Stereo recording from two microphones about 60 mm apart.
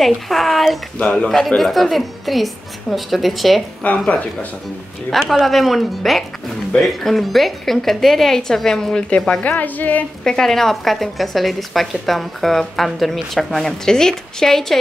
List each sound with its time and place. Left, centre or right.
0.0 s speech: centre
0.9 s speech: centre
1.6 s a woman's voice: centre
4.0 s a woman's voice: left
5.1 s a woman's voice: centre
9.4 s a woman's voice: left
10.2 s a woman's voice: centre